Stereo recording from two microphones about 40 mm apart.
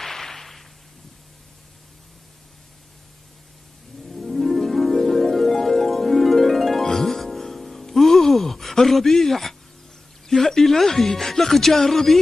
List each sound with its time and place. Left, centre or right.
0.0 s whip: centre
4.1 s harp: centre
10.2 s speech: centre